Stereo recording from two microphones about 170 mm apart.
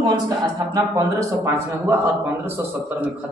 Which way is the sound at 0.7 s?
20° right (ahead or behind).